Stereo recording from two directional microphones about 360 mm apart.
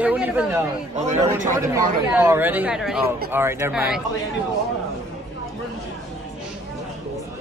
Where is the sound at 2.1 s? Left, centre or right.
Centre.